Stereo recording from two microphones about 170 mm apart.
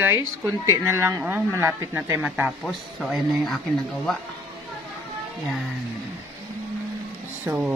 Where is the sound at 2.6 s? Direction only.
Centre (ahead or behind).